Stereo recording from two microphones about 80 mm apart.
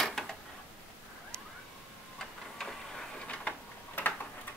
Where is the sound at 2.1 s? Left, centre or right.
Centre.